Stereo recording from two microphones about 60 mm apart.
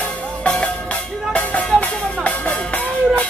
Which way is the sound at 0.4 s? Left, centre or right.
Left.